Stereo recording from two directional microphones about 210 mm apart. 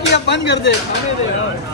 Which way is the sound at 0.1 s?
55° left (ahead or behind).